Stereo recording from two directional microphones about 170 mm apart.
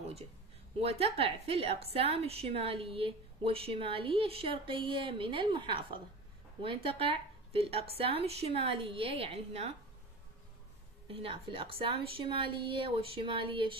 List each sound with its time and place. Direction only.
0.7 s a woman's voice: 35° right (ahead or behind)
11.1 s a woman's voice: 30° right (ahead or behind)